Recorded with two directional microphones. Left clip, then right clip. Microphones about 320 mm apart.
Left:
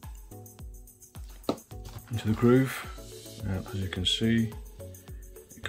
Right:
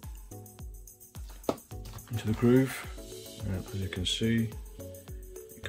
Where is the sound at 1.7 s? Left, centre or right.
Centre.